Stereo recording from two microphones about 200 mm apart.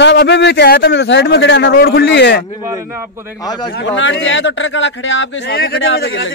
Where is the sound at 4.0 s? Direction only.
65° left (ahead or behind); by 5.7 s 50° left (ahead or behind).